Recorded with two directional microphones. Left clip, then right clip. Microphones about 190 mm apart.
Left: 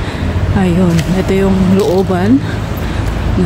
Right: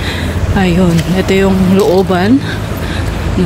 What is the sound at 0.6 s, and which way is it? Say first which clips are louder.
Speech: right 2 dB; 10° left (ahead or behind).